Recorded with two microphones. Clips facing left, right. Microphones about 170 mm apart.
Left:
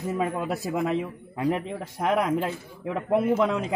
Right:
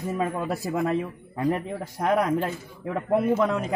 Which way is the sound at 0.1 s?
5° left (ahead or behind).